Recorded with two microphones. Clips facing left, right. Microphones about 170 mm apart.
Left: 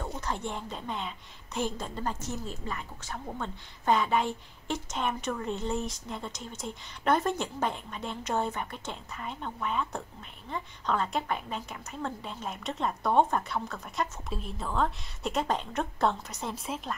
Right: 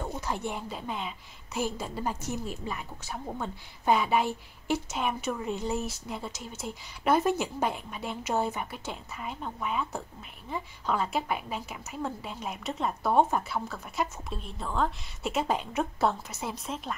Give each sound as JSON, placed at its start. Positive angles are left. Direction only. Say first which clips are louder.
{"t": 0.0, "sound": "a woman's voice", "louder": "right 1 dB", "side_deg": -10}